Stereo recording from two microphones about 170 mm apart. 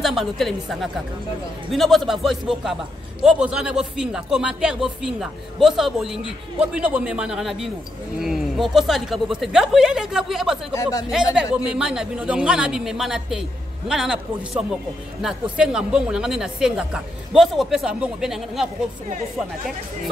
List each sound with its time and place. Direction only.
0.0 s speech: centre (ahead or behind)
10.7 s speech: 20° left (ahead or behind)
11.6 s speech: 5° right (ahead or behind)